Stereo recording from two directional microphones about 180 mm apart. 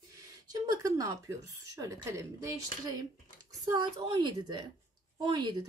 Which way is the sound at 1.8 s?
15° right (ahead or behind).